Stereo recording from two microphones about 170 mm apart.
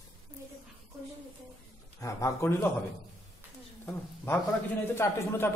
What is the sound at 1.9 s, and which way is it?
Speech, 20° left (ahead or behind).